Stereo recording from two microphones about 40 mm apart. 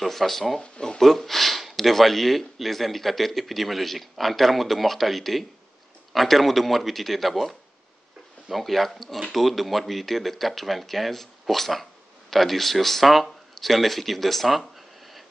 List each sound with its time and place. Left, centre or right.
0.0 s speech: centre
0.6 s speech: centre
1.0 s speech: centre